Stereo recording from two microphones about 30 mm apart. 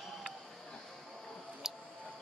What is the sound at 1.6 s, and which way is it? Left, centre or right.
Music, centre.